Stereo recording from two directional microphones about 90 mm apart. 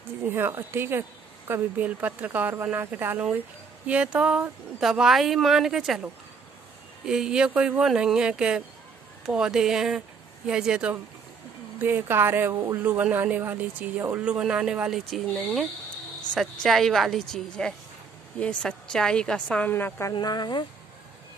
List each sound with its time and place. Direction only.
0.2 s speech: 25° right (ahead or behind); by 6.0 s 5° right (ahead or behind)
7.1 s speech: 10° right (ahead or behind)
11.8 s a woman's voice: 25° right (ahead or behind); by 19.7 s 10° left (ahead or behind)
19.7 s a woman's voice: 30° left (ahead or behind)
20.2 s speech: 50° left (ahead or behind)